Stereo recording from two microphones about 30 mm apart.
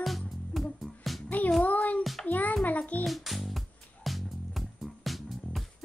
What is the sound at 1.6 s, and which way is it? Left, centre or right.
A child's voice, left.